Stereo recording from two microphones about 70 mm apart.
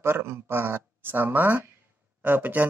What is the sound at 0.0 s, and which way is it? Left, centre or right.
Speech, right.